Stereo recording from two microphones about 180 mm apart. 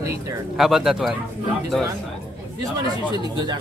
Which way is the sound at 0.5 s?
Centre (ahead or behind).